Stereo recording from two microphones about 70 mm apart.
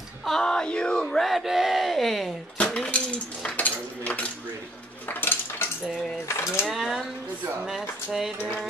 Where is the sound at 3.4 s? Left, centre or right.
Left.